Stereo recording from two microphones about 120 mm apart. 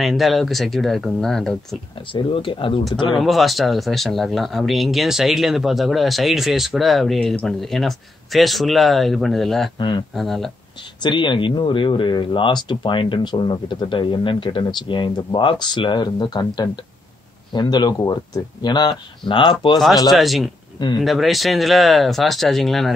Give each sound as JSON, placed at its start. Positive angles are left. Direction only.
{"t": 0.0, "sound": "speech", "side_deg": 0}
{"t": 2.0, "sound": "speech", "side_deg": 45}
{"t": 3.2, "sound": "speech", "side_deg": 0}
{"t": 9.8, "sound": "speech", "side_deg": 40}
{"t": 10.1, "sound": "speech", "side_deg": 0}
{"t": 11.0, "sound": "speech", "side_deg": 40}
{"t": 20.1, "sound": "speech", "side_deg": 0}